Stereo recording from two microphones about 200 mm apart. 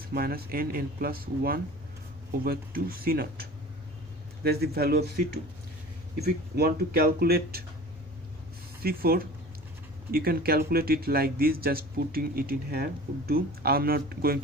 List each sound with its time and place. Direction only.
0.1 s speech: 50° right (ahead or behind)
6.1 s speech: 50° right (ahead or behind)
8.8 s speech: 50° right (ahead or behind)